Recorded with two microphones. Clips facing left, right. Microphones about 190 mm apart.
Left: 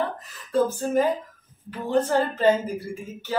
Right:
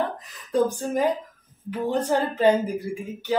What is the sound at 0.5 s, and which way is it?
A woman's voice, 15° right (ahead or behind).